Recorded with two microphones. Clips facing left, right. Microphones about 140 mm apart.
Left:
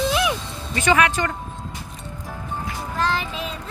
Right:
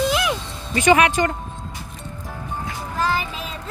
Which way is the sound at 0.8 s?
15° right (ahead or behind).